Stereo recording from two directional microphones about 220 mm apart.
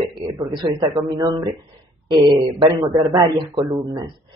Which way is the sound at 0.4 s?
20° right (ahead or behind).